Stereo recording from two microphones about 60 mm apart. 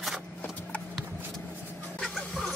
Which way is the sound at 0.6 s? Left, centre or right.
Left.